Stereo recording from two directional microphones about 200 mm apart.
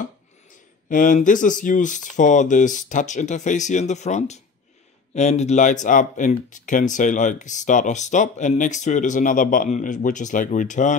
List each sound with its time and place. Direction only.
0.8 s speech: 40° left (ahead or behind)